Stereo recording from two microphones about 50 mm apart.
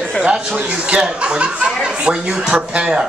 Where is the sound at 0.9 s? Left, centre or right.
Centre.